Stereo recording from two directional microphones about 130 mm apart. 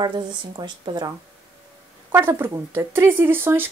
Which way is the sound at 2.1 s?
20° right (ahead or behind).